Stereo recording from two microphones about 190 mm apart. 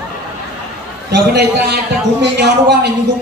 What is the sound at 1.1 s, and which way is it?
Speech, 60° right (ahead or behind).